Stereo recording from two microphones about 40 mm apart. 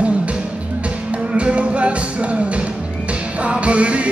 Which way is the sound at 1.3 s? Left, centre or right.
Right.